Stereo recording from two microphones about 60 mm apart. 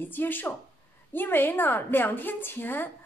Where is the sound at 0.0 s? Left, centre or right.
Left.